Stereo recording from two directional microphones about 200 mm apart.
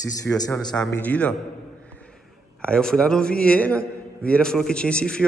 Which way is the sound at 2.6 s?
5° left (ahead or behind).